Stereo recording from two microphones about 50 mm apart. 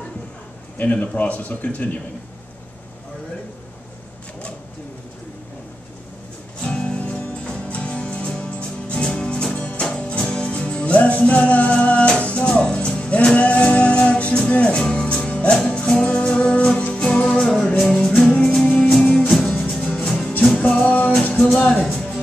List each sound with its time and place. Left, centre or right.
0.7 s speech: left
6.6 s music: centre
7.0 s music: left; by 19.5 s centre
20.1 s music: centre